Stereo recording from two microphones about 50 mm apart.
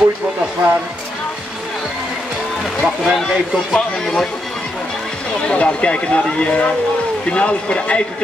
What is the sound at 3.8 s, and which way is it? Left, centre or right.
Speech, centre.